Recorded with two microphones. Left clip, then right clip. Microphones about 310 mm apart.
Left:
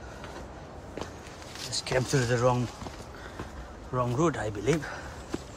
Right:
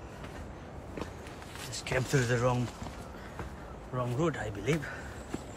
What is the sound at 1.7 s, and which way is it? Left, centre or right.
Speech, centre.